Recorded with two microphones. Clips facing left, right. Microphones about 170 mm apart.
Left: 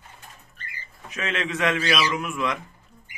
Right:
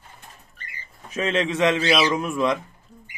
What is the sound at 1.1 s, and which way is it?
A man's voice, 35° right (ahead or behind).